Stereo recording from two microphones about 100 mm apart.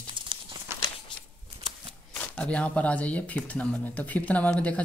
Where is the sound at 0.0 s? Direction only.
55° right (ahead or behind).